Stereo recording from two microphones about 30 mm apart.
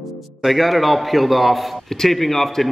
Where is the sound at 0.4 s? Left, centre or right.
Centre.